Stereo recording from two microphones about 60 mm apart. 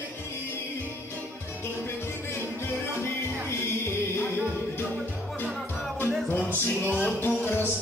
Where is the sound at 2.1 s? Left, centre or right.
Left.